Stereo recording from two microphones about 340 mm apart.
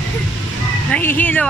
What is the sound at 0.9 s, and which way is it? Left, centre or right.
Music, centre.